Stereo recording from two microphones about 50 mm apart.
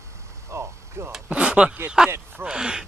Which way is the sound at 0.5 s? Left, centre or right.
Right.